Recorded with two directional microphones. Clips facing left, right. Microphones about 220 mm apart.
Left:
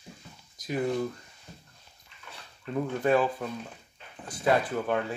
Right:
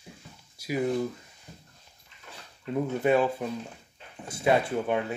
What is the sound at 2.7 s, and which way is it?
Speech, 10° right (ahead or behind).